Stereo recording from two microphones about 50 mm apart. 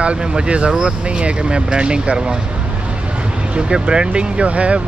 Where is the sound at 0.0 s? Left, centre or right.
Right.